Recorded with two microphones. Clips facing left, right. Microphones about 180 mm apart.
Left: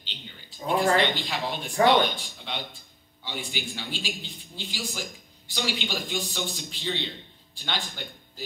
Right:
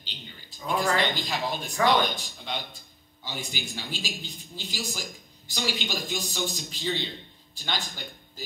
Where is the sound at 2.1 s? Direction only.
40° right (ahead or behind).